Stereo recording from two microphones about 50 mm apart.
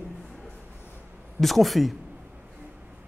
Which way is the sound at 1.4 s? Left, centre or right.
Centre.